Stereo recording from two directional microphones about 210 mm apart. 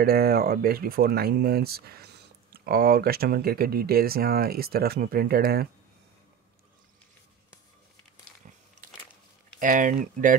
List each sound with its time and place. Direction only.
0.0 s speech: 45° right (ahead or behind)
9.6 s speech: 40° right (ahead or behind)